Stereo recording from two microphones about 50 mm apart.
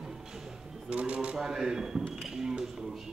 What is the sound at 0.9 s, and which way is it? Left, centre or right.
A man's voice, right.